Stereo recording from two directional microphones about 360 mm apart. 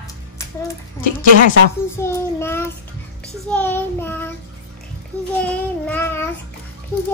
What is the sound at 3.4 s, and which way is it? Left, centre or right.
Child singing, centre.